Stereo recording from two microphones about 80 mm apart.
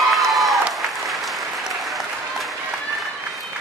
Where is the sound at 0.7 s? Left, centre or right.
Centre.